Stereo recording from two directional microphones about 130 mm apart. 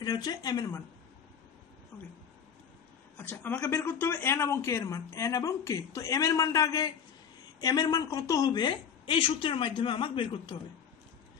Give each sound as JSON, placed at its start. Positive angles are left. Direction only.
{"t": 0.0, "sound": "a woman's voice", "side_deg": 30}
{"t": 3.2, "sound": "a woman's voice", "side_deg": 15}